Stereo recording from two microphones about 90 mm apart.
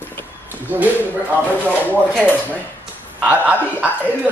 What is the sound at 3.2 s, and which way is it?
Speech, 20° right (ahead or behind).